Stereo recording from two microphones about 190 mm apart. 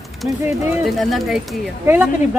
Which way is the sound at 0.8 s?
Centre (ahead or behind).